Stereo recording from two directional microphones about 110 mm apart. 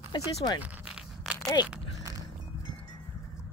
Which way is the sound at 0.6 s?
10° right (ahead or behind).